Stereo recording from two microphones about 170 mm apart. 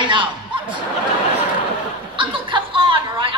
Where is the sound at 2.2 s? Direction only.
30° right (ahead or behind).